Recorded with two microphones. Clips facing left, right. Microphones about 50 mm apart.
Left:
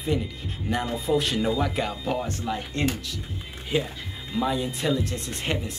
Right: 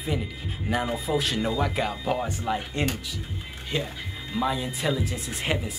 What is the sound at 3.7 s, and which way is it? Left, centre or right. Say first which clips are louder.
Speech: left 4 dB; centre.